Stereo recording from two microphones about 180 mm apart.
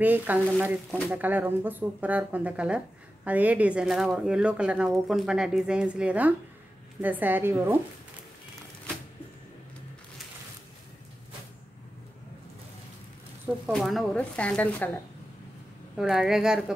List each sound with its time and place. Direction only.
0.0 s speech: 10° right (ahead or behind)
13.7 s speech: centre (ahead or behind)
16.0 s speech: centre (ahead or behind)